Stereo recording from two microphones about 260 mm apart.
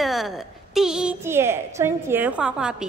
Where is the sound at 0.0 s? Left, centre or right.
Centre.